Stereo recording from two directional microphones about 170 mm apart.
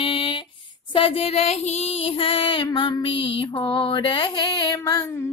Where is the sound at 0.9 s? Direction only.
35° left (ahead or behind).